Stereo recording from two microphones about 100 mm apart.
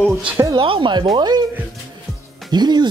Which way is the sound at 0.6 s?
55° right (ahead or behind).